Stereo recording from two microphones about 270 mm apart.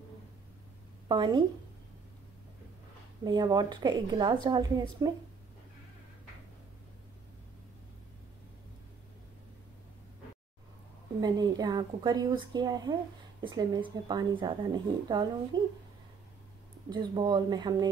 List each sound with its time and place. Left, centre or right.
1.0 s a woman's voice: centre
3.3 s a woman's voice: centre
11.1 s a woman's voice: centre
16.9 s a woman's voice: centre